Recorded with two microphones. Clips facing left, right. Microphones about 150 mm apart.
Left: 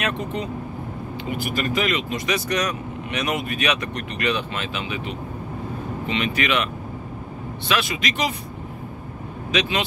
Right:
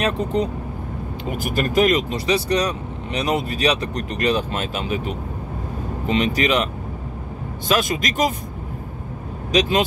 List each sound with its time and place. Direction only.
0.0 s speech: 35° right (ahead or behind)
9.5 s speech: 40° right (ahead or behind)